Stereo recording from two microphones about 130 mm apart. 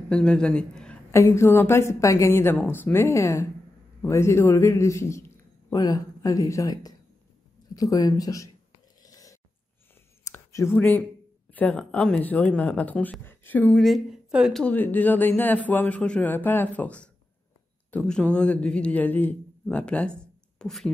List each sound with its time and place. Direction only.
0.1 s a man's voice: 5° left (ahead or behind)
1.1 s a woman's voice: 20° left (ahead or behind)
9.0 s a sound: 25° left (ahead or behind)
11.5 s a man's voice: 10° left (ahead or behind)
13.7 s speech: centre (ahead or behind)
14.6 s a man's voice: 10° left (ahead or behind)
20.2 s a sound: 5° left (ahead or behind)